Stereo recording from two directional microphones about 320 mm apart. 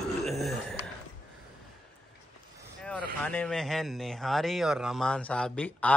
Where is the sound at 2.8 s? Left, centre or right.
Centre.